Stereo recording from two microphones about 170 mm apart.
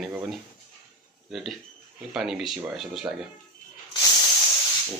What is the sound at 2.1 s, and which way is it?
Speech, 5° right (ahead or behind).